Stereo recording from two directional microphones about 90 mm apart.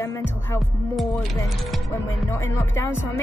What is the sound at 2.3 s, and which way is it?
Speech, 30° left (ahead or behind).